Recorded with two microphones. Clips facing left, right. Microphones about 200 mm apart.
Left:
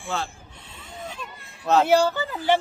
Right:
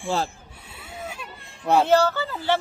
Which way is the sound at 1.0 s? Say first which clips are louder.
Even; 10° right (ahead or behind).